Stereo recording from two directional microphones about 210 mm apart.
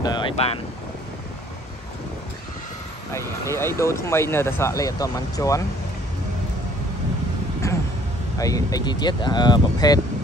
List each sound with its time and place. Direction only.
0.0 s speech: 20° left (ahead or behind)
3.1 s speech: 15° left (ahead or behind)
7.6 s a sound: 15° left (ahead or behind)
8.4 s speech: 15° left (ahead or behind)